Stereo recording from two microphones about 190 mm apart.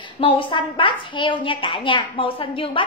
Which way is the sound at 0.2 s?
25° left (ahead or behind).